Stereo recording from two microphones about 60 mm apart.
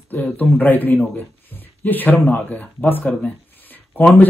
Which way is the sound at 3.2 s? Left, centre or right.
Left.